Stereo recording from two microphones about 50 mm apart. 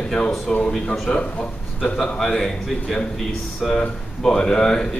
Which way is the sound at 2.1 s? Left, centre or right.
Centre.